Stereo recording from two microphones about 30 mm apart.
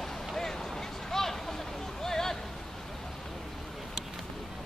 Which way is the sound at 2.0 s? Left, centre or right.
Centre.